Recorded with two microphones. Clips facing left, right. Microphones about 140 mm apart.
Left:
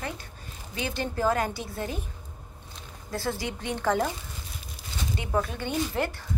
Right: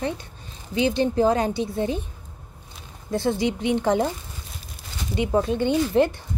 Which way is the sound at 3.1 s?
20° right (ahead or behind).